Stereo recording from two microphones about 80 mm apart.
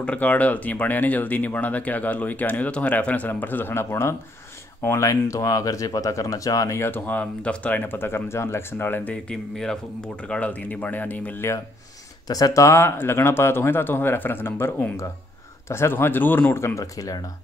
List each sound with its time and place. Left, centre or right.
0.0 s speech: centre; by 6.8 s left
6.8 s speech: left
9.1 s speech: centre
12.3 s speech: left
16.6 s speech: left